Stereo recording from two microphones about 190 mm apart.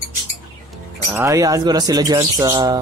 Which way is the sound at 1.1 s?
15° right (ahead or behind).